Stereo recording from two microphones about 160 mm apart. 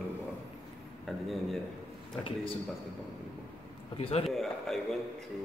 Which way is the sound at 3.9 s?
40° left (ahead or behind).